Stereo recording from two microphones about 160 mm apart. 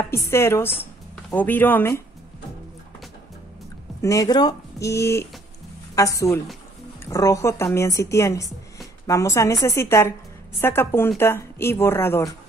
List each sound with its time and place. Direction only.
0.1 s speech: 15° left (ahead or behind)
4.0 s speech: 20° left (ahead or behind)